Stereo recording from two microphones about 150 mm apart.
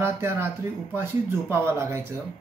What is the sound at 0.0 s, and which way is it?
A man's voice, 15° right (ahead or behind).